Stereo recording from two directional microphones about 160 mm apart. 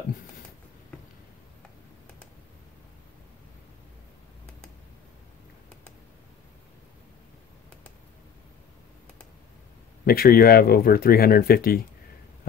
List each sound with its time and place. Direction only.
10.0 s speech: 65° left (ahead or behind)